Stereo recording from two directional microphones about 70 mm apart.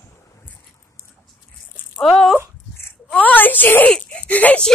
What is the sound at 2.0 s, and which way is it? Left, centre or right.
Speech, centre.